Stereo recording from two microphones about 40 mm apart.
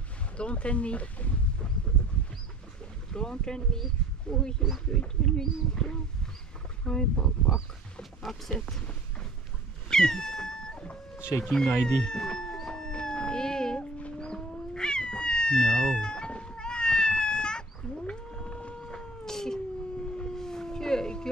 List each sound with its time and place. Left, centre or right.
0.4 s speech: left
3.1 s speech: centre
8.0 s speech: centre
9.8 s cat: centre
11.5 s speech: centre
12.0 s cat: centre
13.9 s cat: left; by 19.6 s centre
20.3 s howl: centre